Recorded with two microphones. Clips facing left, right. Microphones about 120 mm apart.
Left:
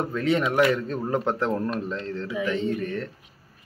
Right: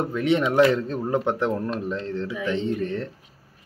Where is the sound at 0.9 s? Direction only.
15° right (ahead or behind).